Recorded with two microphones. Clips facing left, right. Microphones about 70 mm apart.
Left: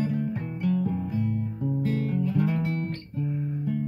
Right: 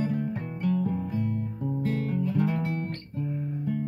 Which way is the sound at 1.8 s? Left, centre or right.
Right.